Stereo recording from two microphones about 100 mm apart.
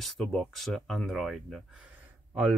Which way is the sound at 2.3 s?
15° right (ahead or behind).